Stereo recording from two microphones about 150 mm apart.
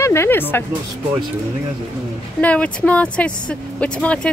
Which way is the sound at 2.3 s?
10° left (ahead or behind).